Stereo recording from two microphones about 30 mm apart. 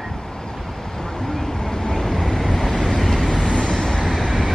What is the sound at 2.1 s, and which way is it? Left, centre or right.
Vehicle, centre.